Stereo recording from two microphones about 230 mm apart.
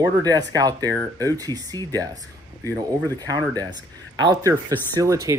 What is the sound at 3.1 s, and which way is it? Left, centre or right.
Speech, centre.